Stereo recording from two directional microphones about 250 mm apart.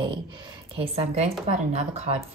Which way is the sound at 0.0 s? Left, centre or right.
Centre.